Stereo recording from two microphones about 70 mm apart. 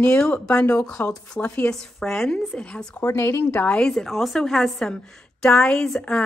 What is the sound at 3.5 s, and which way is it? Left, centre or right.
Speech, left.